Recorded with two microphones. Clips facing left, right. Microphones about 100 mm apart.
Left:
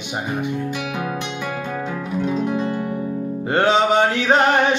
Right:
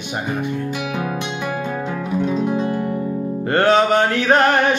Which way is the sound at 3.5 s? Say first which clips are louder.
Right 1 dB; 20° left (ahead or behind).